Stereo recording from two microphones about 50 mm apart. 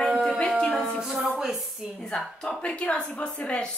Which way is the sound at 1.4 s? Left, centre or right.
Centre.